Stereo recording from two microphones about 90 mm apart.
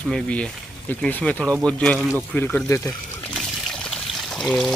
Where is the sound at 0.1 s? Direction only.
10° left (ahead or behind).